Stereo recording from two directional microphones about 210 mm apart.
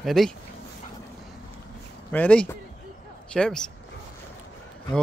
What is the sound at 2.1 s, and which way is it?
Speech, 5° left (ahead or behind).